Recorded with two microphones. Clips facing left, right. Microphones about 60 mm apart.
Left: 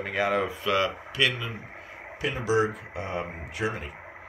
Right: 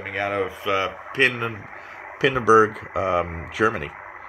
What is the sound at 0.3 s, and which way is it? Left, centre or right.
Speech, centre.